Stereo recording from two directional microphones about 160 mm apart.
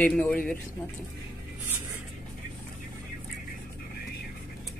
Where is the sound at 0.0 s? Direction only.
10° left (ahead or behind).